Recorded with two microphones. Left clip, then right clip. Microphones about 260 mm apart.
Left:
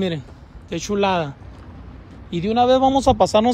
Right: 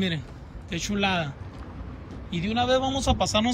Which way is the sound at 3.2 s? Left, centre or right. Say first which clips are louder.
Left 9 dB; left.